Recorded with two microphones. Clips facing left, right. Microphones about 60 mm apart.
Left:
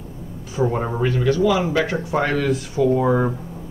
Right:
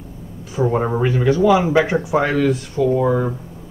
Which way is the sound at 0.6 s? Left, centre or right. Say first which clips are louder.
Right 3 dB; centre.